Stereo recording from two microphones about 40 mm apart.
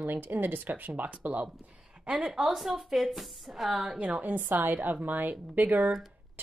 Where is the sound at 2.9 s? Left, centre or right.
Centre.